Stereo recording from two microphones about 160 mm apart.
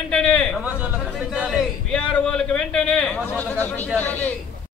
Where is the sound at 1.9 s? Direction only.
5° left (ahead or behind).